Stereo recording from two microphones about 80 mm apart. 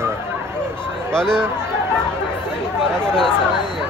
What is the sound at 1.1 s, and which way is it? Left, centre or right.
Speech, centre.